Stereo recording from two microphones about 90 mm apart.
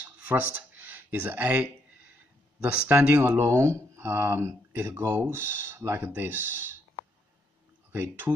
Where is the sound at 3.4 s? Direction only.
30° right (ahead or behind).